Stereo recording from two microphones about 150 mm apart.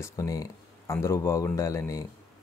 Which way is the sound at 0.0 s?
20° left (ahead or behind).